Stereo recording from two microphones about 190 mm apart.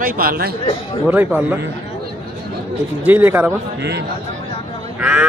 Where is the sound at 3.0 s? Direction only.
10° right (ahead or behind).